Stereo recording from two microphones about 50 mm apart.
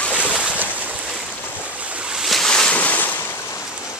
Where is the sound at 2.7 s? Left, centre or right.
Left.